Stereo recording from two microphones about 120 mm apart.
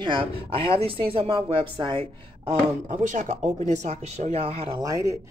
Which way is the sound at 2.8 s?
90° right.